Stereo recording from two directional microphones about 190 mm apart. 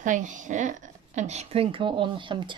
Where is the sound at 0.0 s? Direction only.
40° right (ahead or behind).